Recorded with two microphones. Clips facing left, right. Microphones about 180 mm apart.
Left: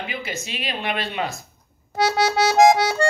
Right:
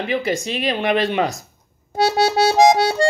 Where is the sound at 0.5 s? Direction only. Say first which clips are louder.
Right 7 dB; 45° right (ahead or behind).